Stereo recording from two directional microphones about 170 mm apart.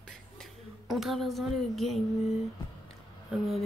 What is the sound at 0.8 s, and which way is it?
Speech, centre (ahead or behind).